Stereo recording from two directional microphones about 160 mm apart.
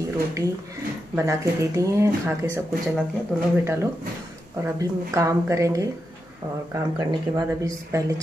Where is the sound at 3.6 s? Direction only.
15° right (ahead or behind).